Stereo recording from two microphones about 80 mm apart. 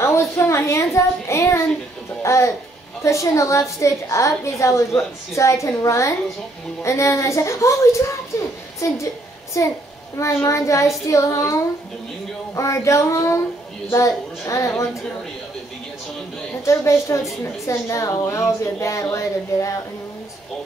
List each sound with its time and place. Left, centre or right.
0.0 s a woman's voice: left
12.5 s a woman's voice: left
16.6 s a woman's voice: left